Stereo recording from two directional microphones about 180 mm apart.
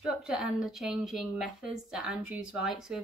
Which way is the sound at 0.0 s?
Centre (ahead or behind).